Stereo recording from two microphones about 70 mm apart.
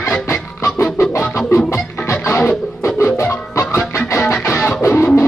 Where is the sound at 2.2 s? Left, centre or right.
Left.